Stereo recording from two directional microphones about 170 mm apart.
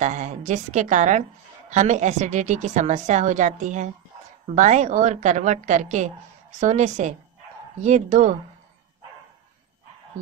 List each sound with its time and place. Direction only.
0.0 s a woman's voice: 45° right (ahead or behind)